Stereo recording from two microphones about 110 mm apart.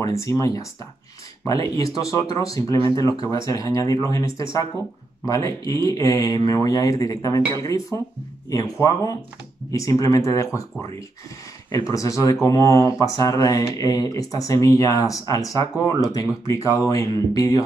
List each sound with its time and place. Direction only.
0.0 s speech: 30° left (ahead or behind)
11.7 s speech: 30° left (ahead or behind)